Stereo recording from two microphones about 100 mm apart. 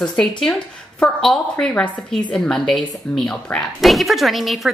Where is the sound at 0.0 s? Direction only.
5° left (ahead or behind).